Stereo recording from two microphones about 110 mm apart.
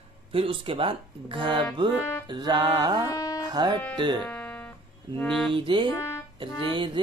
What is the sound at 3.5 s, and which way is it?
Speech, 40° right (ahead or behind).